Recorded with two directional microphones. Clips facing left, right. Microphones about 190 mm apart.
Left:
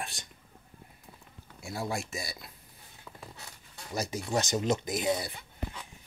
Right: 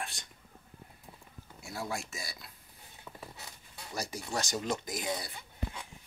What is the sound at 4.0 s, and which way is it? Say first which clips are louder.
Speech: left 5 dB; 20° left (ahead or behind).